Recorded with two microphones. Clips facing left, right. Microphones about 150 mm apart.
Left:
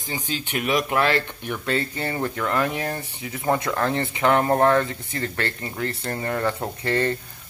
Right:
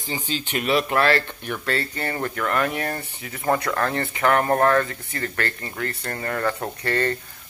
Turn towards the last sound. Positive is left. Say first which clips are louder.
# left 1 dB
turn(degrees=20)  # may be behind; listen again after turning